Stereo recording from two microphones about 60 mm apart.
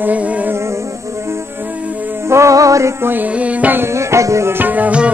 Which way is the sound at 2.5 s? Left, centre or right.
Right.